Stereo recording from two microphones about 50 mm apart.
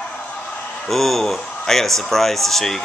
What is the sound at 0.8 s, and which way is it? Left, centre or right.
A man's voice, centre.